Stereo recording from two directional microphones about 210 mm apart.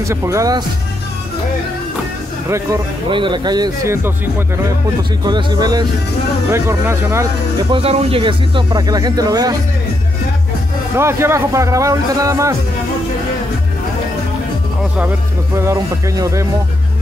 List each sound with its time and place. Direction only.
0.0 s speech: 15° right (ahead or behind)
2.4 s speech: 15° right (ahead or behind)
7.7 s speech: 30° right (ahead or behind)
11.0 s speech: 10° right (ahead or behind)
15.6 s speech: 15° right (ahead or behind)